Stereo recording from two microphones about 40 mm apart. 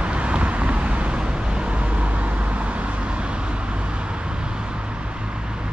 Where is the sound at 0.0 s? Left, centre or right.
Right.